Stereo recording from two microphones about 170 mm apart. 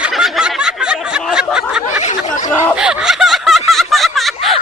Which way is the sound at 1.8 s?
45° left (ahead or behind).